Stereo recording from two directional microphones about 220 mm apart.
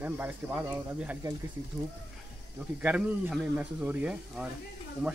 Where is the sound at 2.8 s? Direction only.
5° right (ahead or behind).